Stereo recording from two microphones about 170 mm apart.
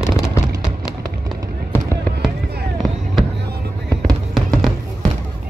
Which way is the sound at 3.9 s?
5° left (ahead or behind).